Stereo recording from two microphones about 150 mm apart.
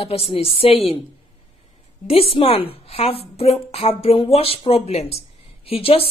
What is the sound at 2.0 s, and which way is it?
A woman's voice, 40° left (ahead or behind).